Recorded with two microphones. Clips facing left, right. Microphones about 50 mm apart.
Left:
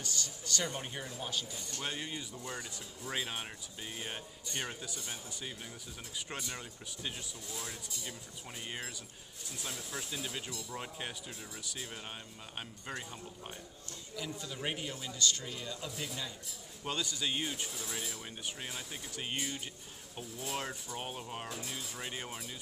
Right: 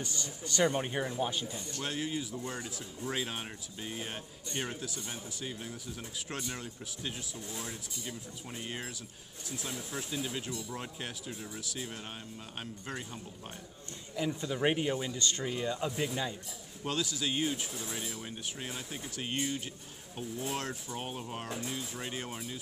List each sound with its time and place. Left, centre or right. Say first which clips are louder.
0.0 s a man's voice: right 2 dB; right
1.8 s speech: right 4 dB; centre
7.3 s a man's voice: right 3 dB; right
7.6 s speech: right 2 dB; centre
14.1 s a man's voice: right 8 dB; right
16.8 s speech: right 3 dB; centre